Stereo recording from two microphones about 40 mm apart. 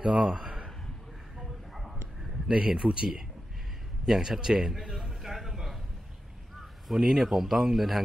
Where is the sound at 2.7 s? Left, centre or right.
Right.